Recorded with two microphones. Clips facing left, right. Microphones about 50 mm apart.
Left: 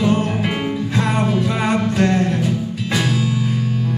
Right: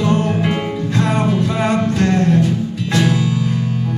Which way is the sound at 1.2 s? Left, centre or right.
Centre.